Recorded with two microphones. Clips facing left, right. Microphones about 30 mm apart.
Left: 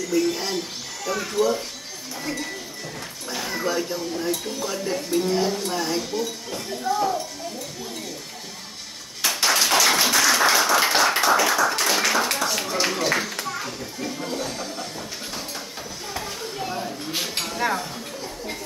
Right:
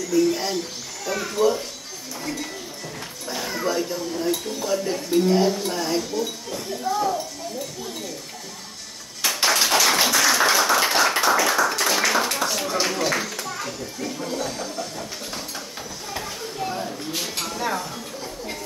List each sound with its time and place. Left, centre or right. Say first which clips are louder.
0.1 s speech: right 3 dB; centre
1.1 s speech: even; centre
2.2 s speech: left 1 dB; centre
9.4 s tap: even; centre
10.0 s clapping: even; centre
12.4 s a child's voice: even; centre
16.1 s children playing: even; centre
16.6 s a sound: right 2 dB; centre
17.1 s speech: left 3 dB; left
17.7 s a sound: right 1 dB; centre